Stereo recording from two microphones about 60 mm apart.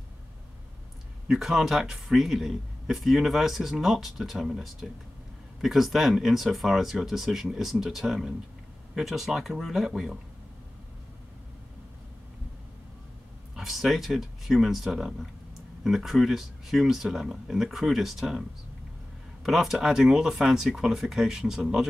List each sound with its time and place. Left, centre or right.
1.2 s speech: centre
13.6 s speech: centre
19.4 s speech: centre